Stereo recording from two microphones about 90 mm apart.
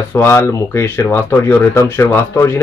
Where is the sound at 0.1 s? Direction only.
30° left (ahead or behind).